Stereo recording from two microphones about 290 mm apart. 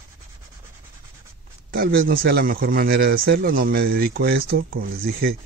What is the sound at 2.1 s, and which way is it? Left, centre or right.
Speech, right.